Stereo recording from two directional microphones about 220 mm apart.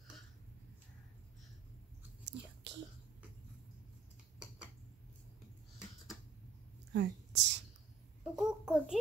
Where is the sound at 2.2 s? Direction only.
55° right (ahead or behind).